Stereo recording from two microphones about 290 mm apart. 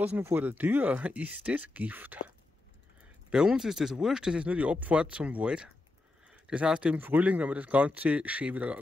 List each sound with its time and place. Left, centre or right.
0.0 s speech: centre